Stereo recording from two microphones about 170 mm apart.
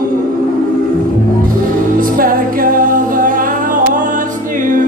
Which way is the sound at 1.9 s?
55° right (ahead or behind).